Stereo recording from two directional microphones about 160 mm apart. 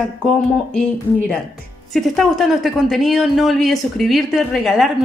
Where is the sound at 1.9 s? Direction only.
Centre (ahead or behind).